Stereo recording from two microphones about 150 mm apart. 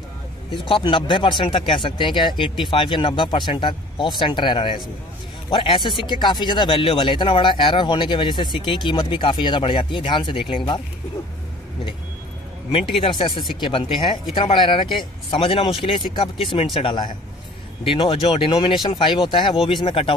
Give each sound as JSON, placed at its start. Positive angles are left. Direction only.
{"t": 0.5, "sound": "speech", "side_deg": 35}
{"t": 13.0, "sound": "speech", "side_deg": 30}